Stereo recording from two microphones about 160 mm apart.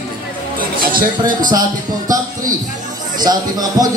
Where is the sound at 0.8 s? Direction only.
60° right (ahead or behind).